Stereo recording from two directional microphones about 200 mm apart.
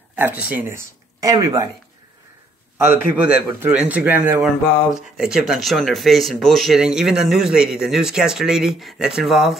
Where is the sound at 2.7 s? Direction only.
10° right (ahead or behind).